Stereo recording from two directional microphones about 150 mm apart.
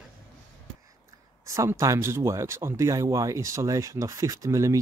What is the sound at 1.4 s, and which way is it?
Speech, 20° right (ahead or behind).